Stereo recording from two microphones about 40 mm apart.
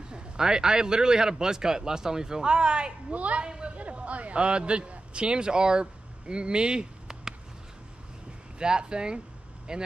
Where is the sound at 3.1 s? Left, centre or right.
Right.